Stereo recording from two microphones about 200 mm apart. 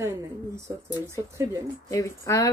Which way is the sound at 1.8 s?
15° left (ahead or behind).